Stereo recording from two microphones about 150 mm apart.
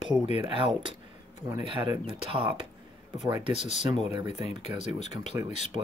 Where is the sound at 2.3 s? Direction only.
35° right (ahead or behind).